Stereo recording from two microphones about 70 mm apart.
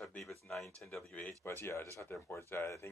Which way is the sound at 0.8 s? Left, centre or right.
Centre.